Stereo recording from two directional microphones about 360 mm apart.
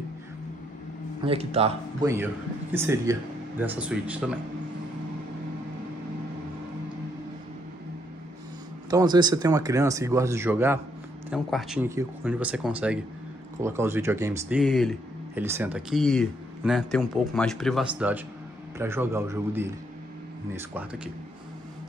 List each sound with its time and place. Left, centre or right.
1.2 s speech: centre
8.9 s speech: centre